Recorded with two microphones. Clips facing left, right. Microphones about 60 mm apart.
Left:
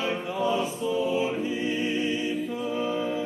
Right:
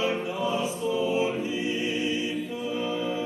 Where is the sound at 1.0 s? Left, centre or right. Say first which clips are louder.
Right 2 dB; right.